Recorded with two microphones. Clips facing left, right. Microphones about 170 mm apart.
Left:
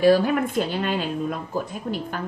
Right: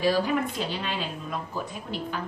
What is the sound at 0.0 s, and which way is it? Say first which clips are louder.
Speech: left 6 dB; 55° left (ahead or behind).